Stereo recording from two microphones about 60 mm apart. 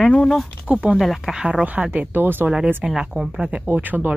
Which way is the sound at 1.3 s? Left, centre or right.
Centre.